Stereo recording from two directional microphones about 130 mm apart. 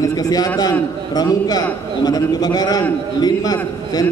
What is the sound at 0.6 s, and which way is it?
A man's voice, 30° left (ahead or behind).